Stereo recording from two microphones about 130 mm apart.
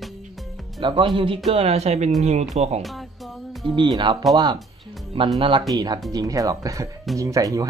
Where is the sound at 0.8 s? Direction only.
40° right (ahead or behind).